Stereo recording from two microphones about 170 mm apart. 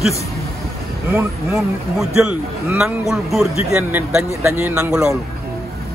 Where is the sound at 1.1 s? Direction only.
5° right (ahead or behind).